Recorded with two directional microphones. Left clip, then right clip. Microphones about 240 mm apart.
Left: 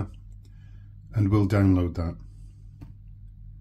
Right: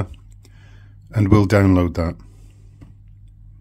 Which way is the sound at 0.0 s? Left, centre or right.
Right.